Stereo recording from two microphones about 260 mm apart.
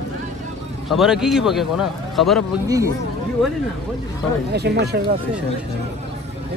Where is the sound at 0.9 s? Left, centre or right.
Centre.